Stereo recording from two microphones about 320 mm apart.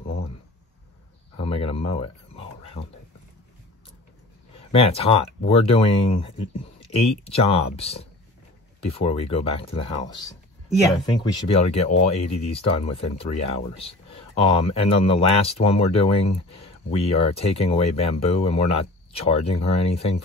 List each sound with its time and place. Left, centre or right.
1.4 s speech: centre
4.7 s speech: centre
11.4 s speech: centre